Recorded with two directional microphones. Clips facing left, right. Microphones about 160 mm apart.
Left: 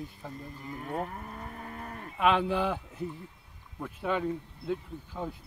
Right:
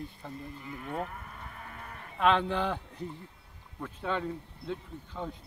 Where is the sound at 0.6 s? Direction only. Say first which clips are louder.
Left 2 dB; 40° left (ahead or behind).